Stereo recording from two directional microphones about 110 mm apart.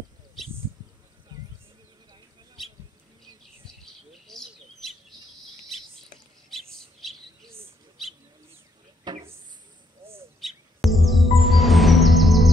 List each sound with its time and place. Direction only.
1.3 s bird: 35° right (ahead or behind)
3.8 s chirp: 5° left (ahead or behind)
6.5 s bird: centre (ahead or behind)
9.1 s a sound: 40° right (ahead or behind)
10.0 s bird: 20° right (ahead or behind)
10.4 s music: centre (ahead or behind)